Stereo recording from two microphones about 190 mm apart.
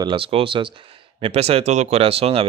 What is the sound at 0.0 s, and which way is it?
Speech, 30° right (ahead or behind).